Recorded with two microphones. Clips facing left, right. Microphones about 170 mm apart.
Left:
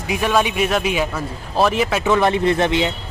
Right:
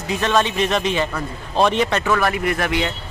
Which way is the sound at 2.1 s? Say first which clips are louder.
Left 4 dB; 25° left (ahead or behind).